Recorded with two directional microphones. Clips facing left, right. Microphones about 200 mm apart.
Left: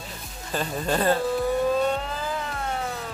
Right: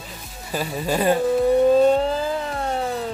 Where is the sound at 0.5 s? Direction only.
10° right (ahead or behind).